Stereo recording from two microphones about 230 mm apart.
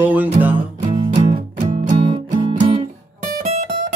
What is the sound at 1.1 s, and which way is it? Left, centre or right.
Music, right.